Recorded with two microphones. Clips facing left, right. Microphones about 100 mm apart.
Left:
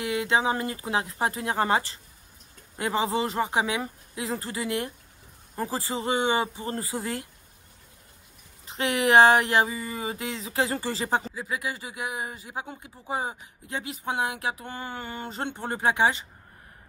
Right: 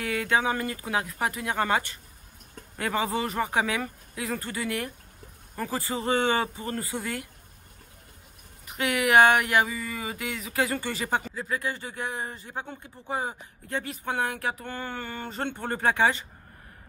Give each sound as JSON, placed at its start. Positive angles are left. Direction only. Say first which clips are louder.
{"t": 0.0, "sound": "speech", "louder": "left 1 dB", "side_deg": 20}
{"t": 8.6, "sound": "speech", "louder": "left 1 dB", "side_deg": 25}
{"t": 11.3, "sound": "speech", "louder": "right 1 dB", "side_deg": 15}